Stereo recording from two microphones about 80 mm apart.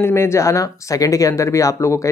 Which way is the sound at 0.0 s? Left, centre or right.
Left.